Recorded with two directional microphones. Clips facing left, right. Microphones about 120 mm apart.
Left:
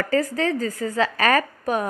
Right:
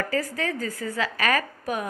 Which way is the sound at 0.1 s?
35° left (ahead or behind).